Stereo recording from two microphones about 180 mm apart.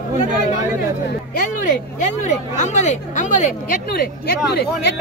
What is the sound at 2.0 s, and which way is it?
Speech, 40° left (ahead or behind).